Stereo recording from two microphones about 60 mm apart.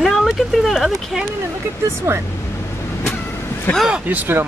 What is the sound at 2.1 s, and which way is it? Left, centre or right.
Speech, right.